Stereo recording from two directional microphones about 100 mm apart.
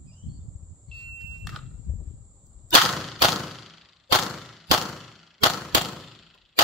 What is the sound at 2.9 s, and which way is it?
Clang, centre (ahead or behind).